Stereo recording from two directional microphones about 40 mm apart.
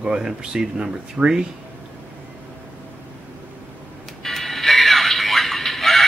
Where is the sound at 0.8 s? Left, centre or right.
Right.